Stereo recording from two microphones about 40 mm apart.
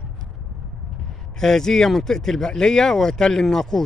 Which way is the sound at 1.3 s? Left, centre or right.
Centre.